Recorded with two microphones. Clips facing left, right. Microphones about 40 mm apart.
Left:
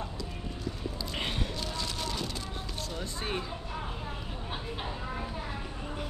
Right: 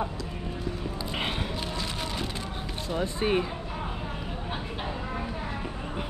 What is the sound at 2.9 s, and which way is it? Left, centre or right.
Speech, right.